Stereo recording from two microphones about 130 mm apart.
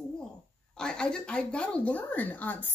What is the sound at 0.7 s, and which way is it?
Speech, 5° left (ahead or behind).